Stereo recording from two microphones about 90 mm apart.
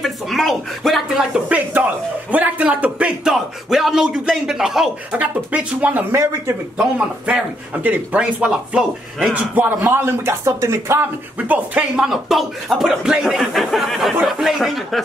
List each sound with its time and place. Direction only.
0.0 s speech: centre (ahead or behind)
1.3 s speech: 20° right (ahead or behind)
5.1 s speech: 15° right (ahead or behind)
6.1 s speech: 30° right (ahead or behind)
6.8 s speech: 10° right (ahead or behind)
9.6 s speech: 25° right (ahead or behind)
11.3 s speech: 20° right (ahead or behind)
12.0 s speech: centre (ahead or behind)